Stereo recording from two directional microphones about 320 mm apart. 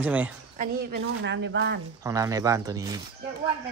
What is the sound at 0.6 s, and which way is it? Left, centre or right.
A woman's voice, right.